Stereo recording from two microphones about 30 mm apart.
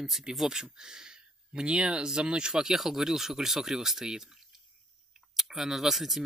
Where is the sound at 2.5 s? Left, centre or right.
Centre.